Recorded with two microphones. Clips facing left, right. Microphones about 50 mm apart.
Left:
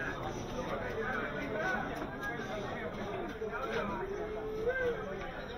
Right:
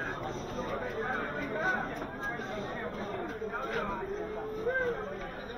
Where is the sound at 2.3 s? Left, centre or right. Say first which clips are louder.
Right 2 dB; right.